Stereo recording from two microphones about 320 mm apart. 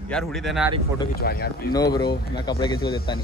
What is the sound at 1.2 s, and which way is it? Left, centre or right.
Speech, left.